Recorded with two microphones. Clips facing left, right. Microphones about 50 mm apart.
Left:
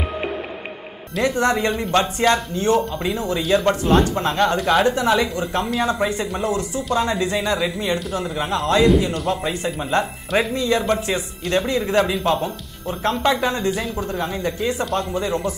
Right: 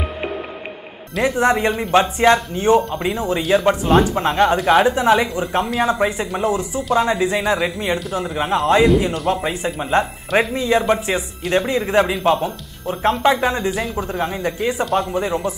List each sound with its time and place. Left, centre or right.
1.1 s a man's voice: centre
1.4 s a man's voice: centre
3.4 s a man's voice: centre
6.8 s a man's voice: centre
7.2 s a man's voice: centre
8.8 s a man's voice: centre
9.3 s a man's voice: centre
11.4 s speech: centre
13.7 s a man's voice: centre
14.1 s speech: centre